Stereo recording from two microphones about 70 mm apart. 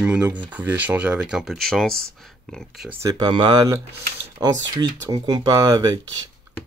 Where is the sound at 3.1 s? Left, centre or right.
Right.